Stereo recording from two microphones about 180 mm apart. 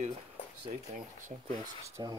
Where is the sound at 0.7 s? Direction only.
40° right (ahead or behind).